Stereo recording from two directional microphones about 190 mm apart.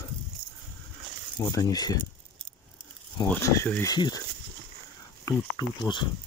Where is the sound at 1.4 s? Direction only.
20° left (ahead or behind).